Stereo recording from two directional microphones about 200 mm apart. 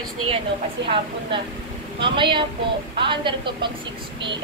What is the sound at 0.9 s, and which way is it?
Speech, 25° right (ahead or behind).